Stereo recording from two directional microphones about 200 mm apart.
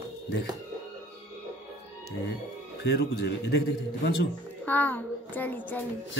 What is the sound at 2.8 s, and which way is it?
A man's voice, 55° left (ahead or behind).